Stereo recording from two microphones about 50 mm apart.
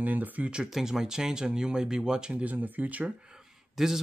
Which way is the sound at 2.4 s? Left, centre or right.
Right.